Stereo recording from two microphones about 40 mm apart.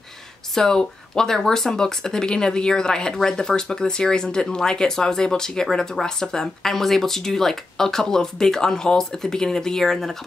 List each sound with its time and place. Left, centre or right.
0.6 s speech: centre